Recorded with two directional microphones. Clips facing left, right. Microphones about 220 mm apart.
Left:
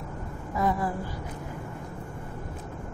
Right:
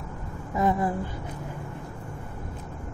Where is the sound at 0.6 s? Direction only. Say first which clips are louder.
Right 3 dB; 20° right (ahead or behind).